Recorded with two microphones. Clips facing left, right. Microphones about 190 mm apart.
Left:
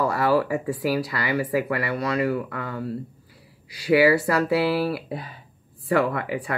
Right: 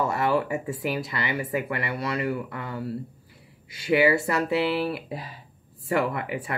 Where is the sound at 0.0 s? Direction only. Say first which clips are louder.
Left 3 dB; 25° right (ahead or behind).